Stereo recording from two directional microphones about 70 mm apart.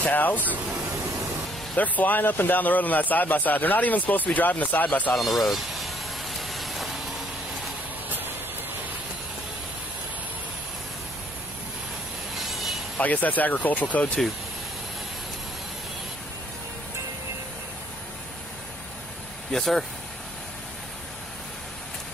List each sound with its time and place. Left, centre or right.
0.0 s speech: left
1.8 s speech: left
5.1 s vehicle: centre
12.4 s vehicle: centre
12.9 s speech: left
19.5 s speech: centre